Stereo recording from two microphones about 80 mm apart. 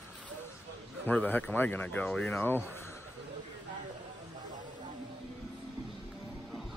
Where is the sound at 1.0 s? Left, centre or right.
Left.